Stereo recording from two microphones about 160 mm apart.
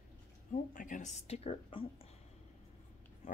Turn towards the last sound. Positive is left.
turn(degrees=45)  # may be behind; listen again after turning